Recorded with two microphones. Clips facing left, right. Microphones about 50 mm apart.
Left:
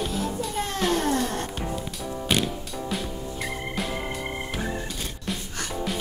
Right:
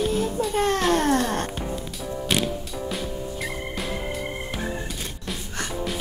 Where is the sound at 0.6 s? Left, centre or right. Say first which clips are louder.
Right 5 dB; right.